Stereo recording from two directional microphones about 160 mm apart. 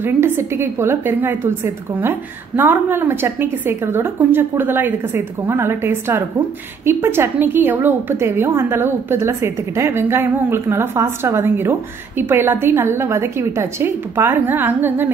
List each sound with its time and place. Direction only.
0.0 s a woman's voice: 15° right (ahead or behind)